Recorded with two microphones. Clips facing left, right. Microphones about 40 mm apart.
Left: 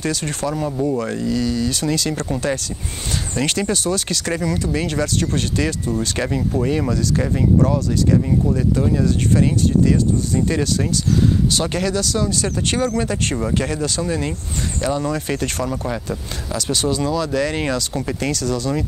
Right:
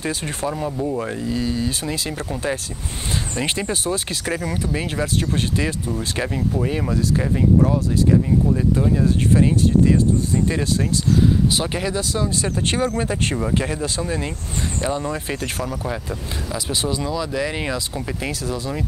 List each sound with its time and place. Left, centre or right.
0.0 s speech: centre
0.7 s speech: centre
0.9 s speech: centre
1.2 s speech: right; by 2.3 s centre
3.3 s speech: centre
5.9 s speech: centre
8.9 s speech: centre
14.8 s speech: centre
17.9 s speech: centre
18.3 s speech: centre